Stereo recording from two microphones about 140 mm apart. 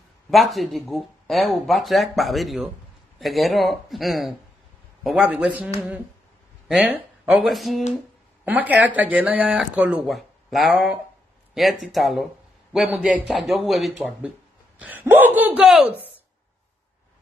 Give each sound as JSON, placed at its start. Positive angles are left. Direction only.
{"t": 0.3, "sound": "speech", "side_deg": 0}
{"t": 6.7, "sound": "speech", "side_deg": -5}
{"t": 8.5, "sound": "speech", "side_deg": -10}
{"t": 14.8, "sound": "speech", "side_deg": -10}
{"t": 15.6, "sound": "speech", "side_deg": 0}